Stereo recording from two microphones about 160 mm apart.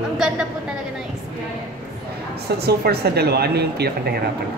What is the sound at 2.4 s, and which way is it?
Speech, 85° right.